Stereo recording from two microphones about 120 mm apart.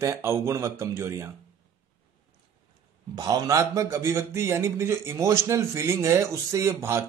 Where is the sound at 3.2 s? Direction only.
30° right (ahead or behind).